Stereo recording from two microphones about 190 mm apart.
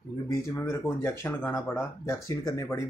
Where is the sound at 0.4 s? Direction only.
15° left (ahead or behind).